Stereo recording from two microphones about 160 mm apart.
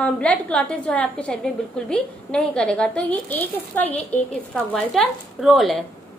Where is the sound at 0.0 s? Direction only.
10° left (ahead or behind).